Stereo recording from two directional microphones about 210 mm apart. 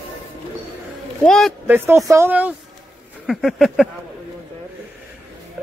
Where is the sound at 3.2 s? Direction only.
Centre (ahead or behind).